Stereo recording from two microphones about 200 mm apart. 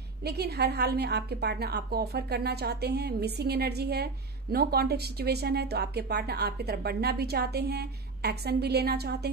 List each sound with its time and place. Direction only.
0.2 s a woman's voice: 55° right (ahead or behind)